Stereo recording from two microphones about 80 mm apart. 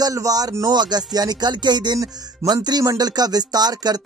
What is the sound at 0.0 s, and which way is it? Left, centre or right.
Speech, right.